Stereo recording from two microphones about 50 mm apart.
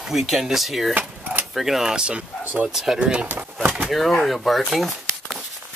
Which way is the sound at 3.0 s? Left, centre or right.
Right.